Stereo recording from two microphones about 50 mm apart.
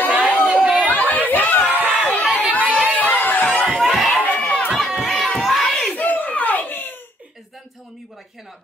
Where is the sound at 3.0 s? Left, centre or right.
Left.